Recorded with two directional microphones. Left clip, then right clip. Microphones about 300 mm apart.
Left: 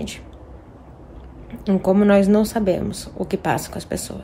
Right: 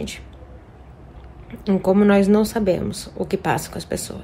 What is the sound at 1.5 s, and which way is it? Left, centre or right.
A woman's voice, centre.